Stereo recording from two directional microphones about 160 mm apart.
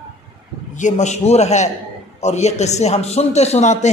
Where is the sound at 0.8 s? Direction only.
45° left (ahead or behind).